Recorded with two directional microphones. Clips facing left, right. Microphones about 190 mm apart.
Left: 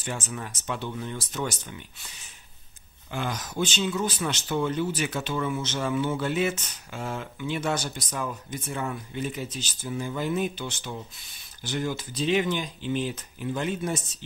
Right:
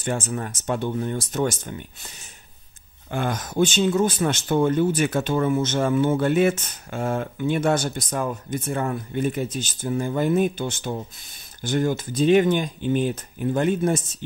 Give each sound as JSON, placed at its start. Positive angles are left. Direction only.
{"t": 0.0, "sound": "speech", "side_deg": -50}